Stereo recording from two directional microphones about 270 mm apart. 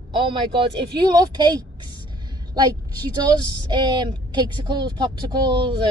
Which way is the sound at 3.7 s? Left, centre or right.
Centre.